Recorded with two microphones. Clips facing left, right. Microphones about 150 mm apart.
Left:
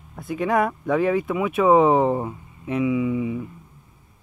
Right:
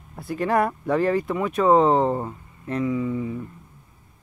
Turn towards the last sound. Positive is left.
turn(degrees=10)  # may be behind; listen again after turning